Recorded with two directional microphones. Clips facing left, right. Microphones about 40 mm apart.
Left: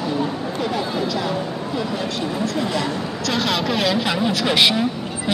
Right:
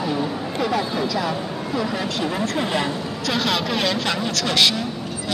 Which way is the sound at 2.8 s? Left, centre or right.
Centre.